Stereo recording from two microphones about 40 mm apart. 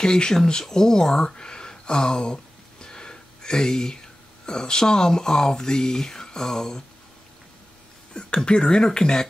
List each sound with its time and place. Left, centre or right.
0.0 s speech: centre
8.1 s speech: left